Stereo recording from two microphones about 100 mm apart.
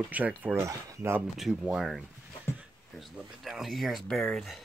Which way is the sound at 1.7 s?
Centre (ahead or behind).